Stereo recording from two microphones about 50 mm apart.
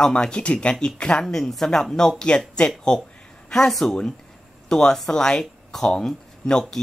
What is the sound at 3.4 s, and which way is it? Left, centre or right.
Speech, centre.